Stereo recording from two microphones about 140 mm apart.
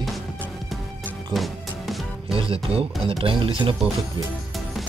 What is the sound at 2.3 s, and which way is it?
Speech, 40° right (ahead or behind).